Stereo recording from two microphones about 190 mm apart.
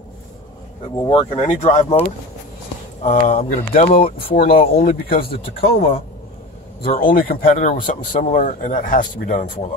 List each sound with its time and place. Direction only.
0.9 s speech: 25° left (ahead or behind); by 5.3 s 50° left (ahead or behind)
6.9 s speech: 50° left (ahead or behind)